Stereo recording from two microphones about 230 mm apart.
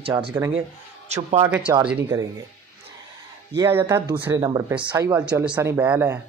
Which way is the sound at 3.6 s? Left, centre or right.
Centre.